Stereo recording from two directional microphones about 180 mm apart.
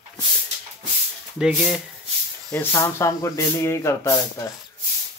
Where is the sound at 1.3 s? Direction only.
5° right (ahead or behind).